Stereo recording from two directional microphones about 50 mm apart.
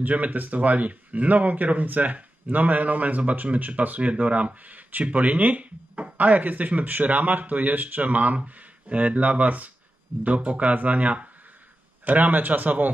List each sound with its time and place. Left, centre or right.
0.0 s speech: right